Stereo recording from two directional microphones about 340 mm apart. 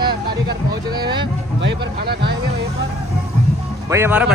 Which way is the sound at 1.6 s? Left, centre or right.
Right.